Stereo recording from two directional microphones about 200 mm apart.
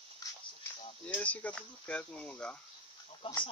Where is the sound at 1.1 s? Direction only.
10° left (ahead or behind).